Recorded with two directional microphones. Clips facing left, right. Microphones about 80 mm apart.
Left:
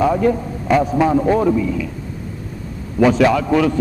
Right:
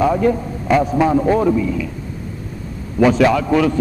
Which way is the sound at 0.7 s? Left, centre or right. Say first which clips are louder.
Even; left.